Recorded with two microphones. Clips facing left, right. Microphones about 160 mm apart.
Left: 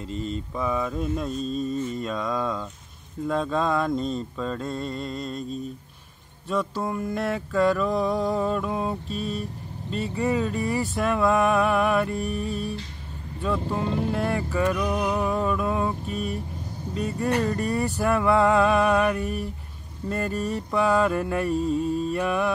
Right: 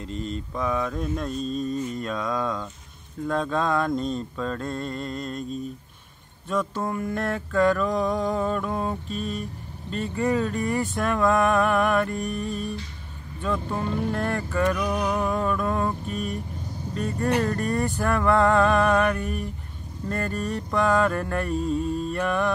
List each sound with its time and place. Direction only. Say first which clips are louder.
0.0 s mantra: left 1 dB; centre (ahead or behind)
12.5 s mantra: left 1 dB; 35° left (ahead or behind)
13.4 s music: left 1 dB; 5° left (ahead or behind)
13.9 s mantra: even; 5° left (ahead or behind)
17.4 s music: even; 5° left (ahead or behind)
21.5 s mantra: left 1 dB; 40° left (ahead or behind)
22.1 s music: even; 10° left (ahead or behind)